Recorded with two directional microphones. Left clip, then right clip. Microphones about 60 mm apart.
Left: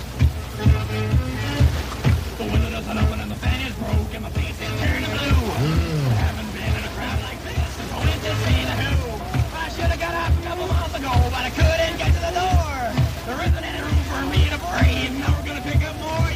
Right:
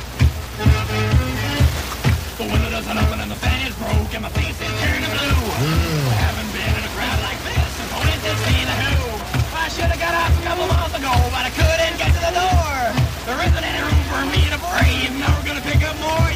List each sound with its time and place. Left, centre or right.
0.2 s music: right
4.8 s music: right
8.0 s music: right